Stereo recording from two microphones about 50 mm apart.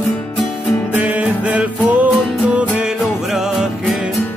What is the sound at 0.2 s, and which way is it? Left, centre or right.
Music, centre.